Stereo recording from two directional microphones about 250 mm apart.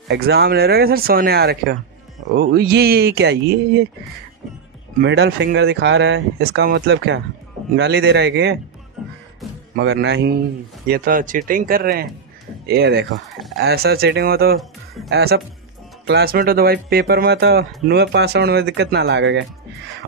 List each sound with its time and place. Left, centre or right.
0.1 s speech: right
4.9 s speech: right
9.8 s speech: right